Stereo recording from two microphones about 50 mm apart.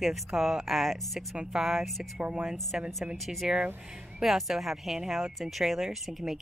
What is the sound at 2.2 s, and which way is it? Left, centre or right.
Speech, right.